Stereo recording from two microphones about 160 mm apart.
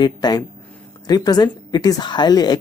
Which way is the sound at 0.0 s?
25° left (ahead or behind).